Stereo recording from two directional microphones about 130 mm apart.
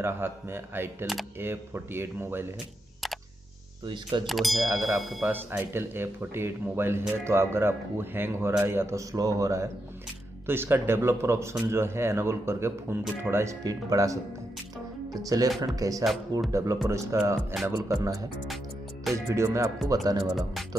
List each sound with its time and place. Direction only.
0.0 s speech: 20° right (ahead or behind)
3.8 s speech: 40° right (ahead or behind)
4.3 s speech: centre (ahead or behind)
5.2 s speech: 15° right (ahead or behind)
16.0 s speech: centre (ahead or behind)
16.8 s speech: 20° right (ahead or behind)
19.1 s speech: 25° right (ahead or behind)